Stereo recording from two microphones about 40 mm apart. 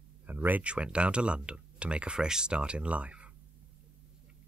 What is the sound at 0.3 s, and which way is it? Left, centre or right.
Speech, right.